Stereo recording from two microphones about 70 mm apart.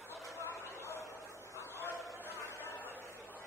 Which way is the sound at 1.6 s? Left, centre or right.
Left.